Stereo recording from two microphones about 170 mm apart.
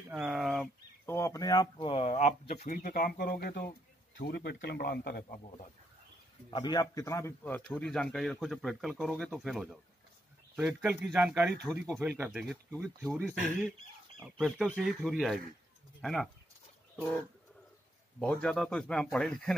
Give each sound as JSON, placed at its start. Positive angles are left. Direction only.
{"t": 0.1, "sound": "speech", "side_deg": -5}
{"t": 1.0, "sound": "a man's voice", "side_deg": 15}
{"t": 6.5, "sound": "a man's voice", "side_deg": 25}
{"t": 14.2, "sound": "a man's voice", "side_deg": 0}
{"t": 18.2, "sound": "a man's voice", "side_deg": 5}